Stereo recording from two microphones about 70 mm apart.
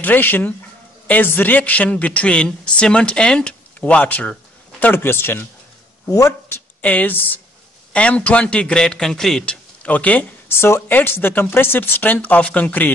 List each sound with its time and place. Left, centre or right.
0.0 s a woman's voice: left
6.0 s speech: left
6.5 s a sound: left
7.9 s a man's voice: centre
9.8 s a woman's voice: left
10.5 s a woman's voice: left